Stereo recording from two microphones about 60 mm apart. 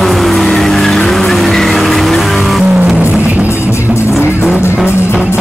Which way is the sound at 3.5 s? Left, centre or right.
Left.